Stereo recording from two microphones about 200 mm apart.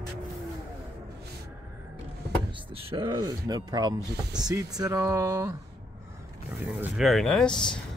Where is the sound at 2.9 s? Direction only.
20° right (ahead or behind).